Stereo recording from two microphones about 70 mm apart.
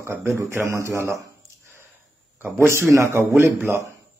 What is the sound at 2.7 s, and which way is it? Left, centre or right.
A man's voice, right.